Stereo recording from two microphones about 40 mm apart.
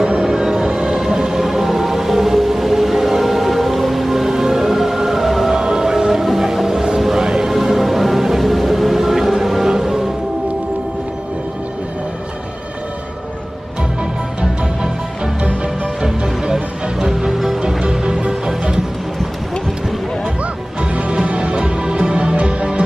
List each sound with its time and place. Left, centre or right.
0.0 s music: centre
16.0 s music: centre
17.6 s music: centre
20.9 s music: right